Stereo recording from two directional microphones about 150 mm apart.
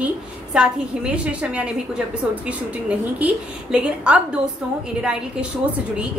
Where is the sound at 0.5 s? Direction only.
5° right (ahead or behind).